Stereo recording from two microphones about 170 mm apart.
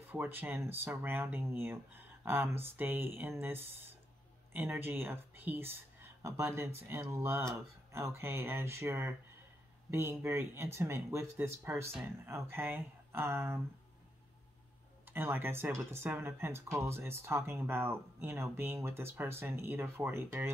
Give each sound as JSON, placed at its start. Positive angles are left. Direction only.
{"t": 0.1, "sound": "speech", "side_deg": -10}
{"t": 15.0, "sound": "speech", "side_deg": -15}